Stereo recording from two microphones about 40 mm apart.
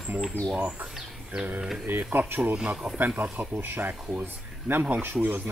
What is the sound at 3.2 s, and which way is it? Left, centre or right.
Speech, right.